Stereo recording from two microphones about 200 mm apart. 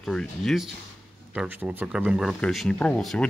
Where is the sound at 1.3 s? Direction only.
5° right (ahead or behind).